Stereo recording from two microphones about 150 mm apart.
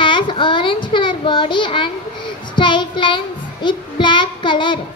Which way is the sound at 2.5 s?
30° left (ahead or behind).